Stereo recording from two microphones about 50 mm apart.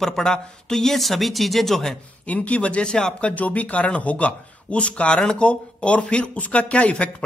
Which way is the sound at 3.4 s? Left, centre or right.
Left.